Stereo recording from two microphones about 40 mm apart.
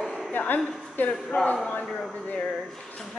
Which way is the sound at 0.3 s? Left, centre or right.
Left.